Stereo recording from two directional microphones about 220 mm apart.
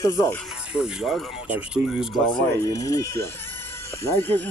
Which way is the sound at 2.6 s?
15° left (ahead or behind).